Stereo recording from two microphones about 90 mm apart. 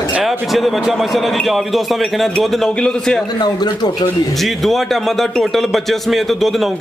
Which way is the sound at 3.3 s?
55° left (ahead or behind).